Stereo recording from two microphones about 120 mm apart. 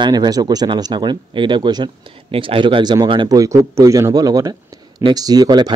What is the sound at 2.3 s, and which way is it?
Speech, 50° right (ahead or behind).